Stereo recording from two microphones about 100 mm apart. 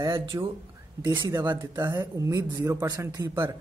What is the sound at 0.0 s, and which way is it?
Speech, 30° right (ahead or behind).